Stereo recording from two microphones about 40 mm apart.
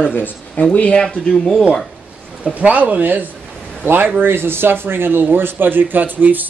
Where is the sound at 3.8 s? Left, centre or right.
Right.